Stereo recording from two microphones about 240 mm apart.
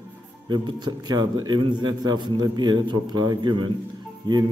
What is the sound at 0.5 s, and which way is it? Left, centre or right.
A man's voice, centre.